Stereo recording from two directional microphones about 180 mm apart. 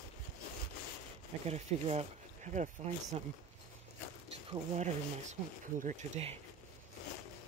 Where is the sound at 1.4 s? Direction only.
35° right (ahead or behind).